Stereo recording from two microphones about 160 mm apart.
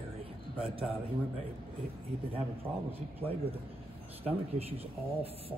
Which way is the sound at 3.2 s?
35° right (ahead or behind).